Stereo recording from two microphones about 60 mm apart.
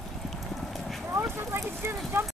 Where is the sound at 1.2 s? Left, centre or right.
Right.